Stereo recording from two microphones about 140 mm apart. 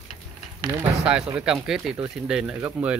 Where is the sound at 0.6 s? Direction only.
25° right (ahead or behind).